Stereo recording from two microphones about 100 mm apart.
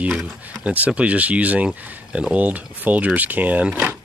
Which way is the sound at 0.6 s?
15° right (ahead or behind).